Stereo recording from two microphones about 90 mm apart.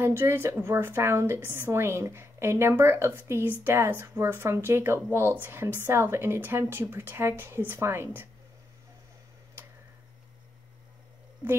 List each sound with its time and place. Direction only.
0.0 s a woman's voice: 25° right (ahead or behind)